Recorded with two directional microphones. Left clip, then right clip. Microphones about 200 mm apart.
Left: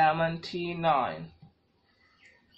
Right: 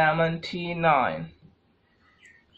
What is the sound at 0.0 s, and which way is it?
Speech, 30° right (ahead or behind).